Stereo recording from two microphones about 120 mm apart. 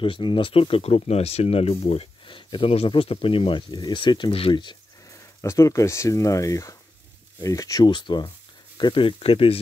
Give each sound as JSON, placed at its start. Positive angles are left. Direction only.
{"t": 0.0, "sound": "speech", "side_deg": 45}
{"t": 5.0, "sound": "speech", "side_deg": 25}